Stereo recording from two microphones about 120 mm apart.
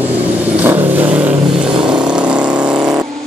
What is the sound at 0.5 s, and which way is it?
Vehicle, 15° right (ahead or behind).